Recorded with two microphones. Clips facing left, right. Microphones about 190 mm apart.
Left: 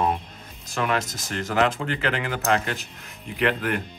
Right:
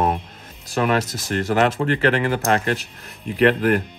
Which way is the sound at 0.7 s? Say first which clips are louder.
Right 5 dB; 35° right (ahead or behind).